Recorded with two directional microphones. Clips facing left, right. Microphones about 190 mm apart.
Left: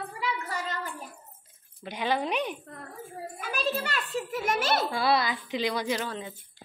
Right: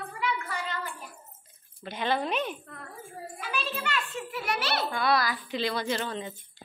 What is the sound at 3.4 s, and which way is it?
A child's voice, 45° left (ahead or behind).